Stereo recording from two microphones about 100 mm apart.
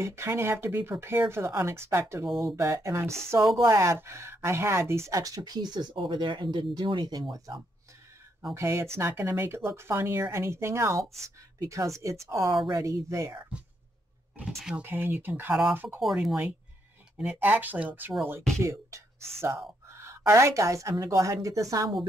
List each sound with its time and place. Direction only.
0.0 s speech: 25° right (ahead or behind)
8.5 s speech: 30° right (ahead or behind)
14.8 s speech: 20° right (ahead or behind)
16.0 s speech: centre (ahead or behind)
17.2 s speech: 15° right (ahead or behind)
18.6 s speech: 30° right (ahead or behind)